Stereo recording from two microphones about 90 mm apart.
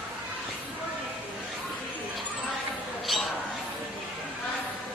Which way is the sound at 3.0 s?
Centre (ahead or behind).